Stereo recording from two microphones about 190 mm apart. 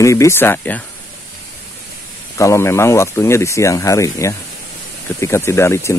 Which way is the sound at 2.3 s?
15° left (ahead or behind).